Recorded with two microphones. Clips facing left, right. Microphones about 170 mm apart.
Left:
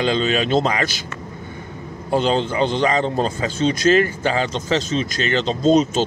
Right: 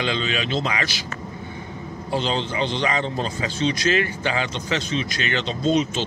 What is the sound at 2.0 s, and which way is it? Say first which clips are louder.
A man's voice: left 6 dB; 45° left (ahead or behind).